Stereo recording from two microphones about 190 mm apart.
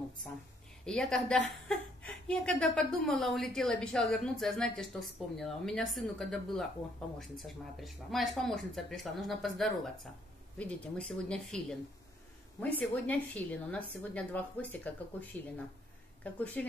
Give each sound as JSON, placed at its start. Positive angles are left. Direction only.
{"t": 0.8, "sound": "a woman's voice", "side_deg": 5}